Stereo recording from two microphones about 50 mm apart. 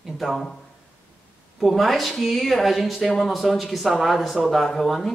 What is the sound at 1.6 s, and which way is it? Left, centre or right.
Speech, centre.